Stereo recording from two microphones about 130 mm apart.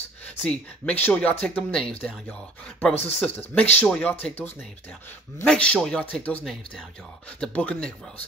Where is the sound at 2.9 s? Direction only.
50° left (ahead or behind).